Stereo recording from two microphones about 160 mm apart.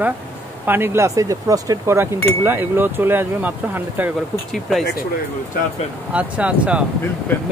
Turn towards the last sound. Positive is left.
turn(degrees=15)  # may be behind; listen again after turning